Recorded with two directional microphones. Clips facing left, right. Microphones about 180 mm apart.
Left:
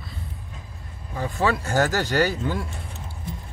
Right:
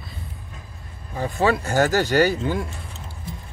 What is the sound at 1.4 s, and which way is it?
Speech, 20° right (ahead or behind).